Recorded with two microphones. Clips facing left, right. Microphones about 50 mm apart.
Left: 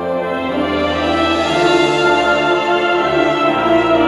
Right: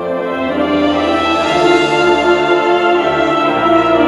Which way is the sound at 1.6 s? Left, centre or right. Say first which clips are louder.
Right 1 dB; centre.